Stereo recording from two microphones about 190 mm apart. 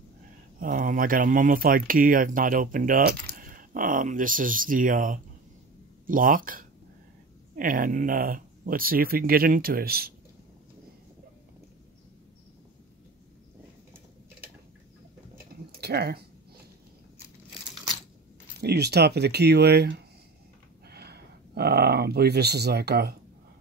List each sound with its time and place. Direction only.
0.6 s speech: 45° right (ahead or behind)
15.8 s speech: 60° right (ahead or behind)
18.6 s speech: 60° right (ahead or behind)